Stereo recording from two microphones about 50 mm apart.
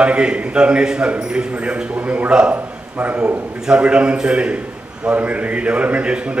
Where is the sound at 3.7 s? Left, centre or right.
Right.